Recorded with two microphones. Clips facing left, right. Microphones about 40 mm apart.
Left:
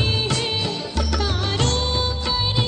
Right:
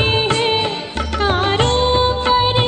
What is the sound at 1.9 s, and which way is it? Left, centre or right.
Music of bollywood, right.